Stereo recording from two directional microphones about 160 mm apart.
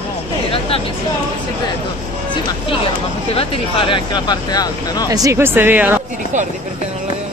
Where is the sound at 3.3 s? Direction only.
35° left (ahead or behind).